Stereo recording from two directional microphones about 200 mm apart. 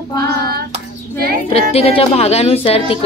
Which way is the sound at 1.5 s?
30° left (ahead or behind).